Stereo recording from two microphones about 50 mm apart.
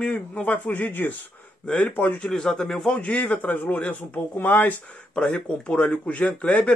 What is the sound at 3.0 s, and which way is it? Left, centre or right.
Speech, left.